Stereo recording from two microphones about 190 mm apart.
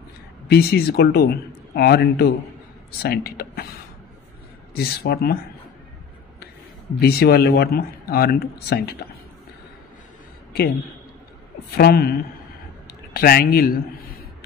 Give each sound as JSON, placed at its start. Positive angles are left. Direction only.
{"t": 0.5, "sound": "speech", "side_deg": 55}
{"t": 4.7, "sound": "speech", "side_deg": 55}
{"t": 7.0, "sound": "speech", "side_deg": 55}
{"t": 11.7, "sound": "a woman's voice", "side_deg": 55}